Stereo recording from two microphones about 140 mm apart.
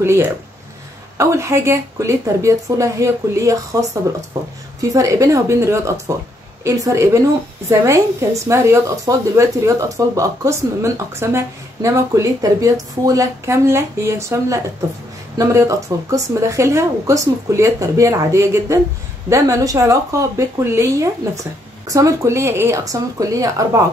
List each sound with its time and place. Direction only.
0.0 s a woman's voice: 20° right (ahead or behind)